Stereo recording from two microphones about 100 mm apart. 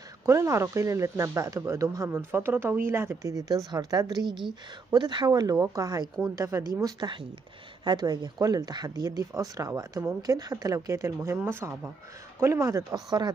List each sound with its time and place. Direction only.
0.2 s speech: 30° right (ahead or behind)
2.1 s speech: 20° right (ahead or behind); by 6.0 s 40° right (ahead or behind)
6.3 s speech: 30° right (ahead or behind)
6.8 s speech: 45° right (ahead or behind)